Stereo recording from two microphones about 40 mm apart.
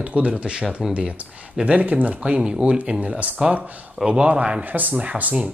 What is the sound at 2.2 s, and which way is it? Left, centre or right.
Speech, right.